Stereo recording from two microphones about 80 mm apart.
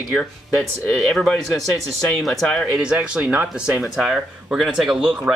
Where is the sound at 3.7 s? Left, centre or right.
Centre.